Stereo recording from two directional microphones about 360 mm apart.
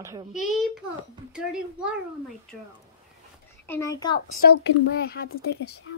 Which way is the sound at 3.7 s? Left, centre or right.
Centre.